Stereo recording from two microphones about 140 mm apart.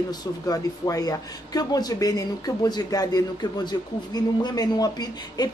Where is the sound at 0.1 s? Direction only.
25° left (ahead or behind).